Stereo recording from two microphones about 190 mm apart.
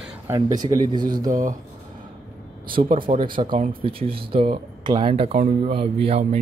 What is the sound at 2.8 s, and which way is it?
Speech, 30° right (ahead or behind).